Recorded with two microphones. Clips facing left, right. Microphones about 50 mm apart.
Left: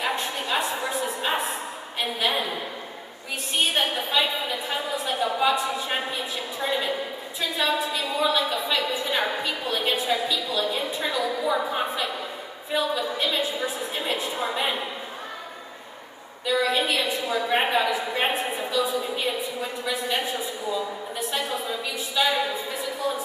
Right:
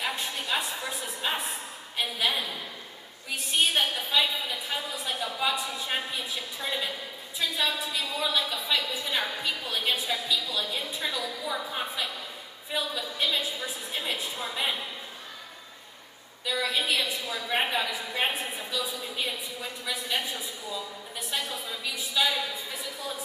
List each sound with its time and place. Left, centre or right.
0.4 s a sound: centre
2.1 s a woman's voice: centre
3.5 s a woman's voice: centre
16.4 s a woman's voice: centre